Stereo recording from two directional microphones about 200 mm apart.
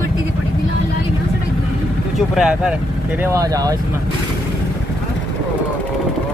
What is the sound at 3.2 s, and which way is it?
Speech, 15° right (ahead or behind).